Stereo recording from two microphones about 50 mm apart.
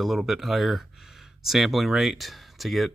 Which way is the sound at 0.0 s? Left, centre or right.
Centre.